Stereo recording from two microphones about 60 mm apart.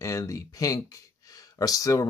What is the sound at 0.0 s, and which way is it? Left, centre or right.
Speech, left.